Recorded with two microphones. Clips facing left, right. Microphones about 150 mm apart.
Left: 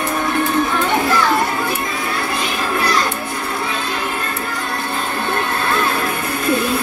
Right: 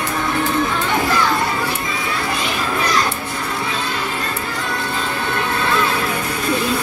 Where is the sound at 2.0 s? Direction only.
50° left (ahead or behind).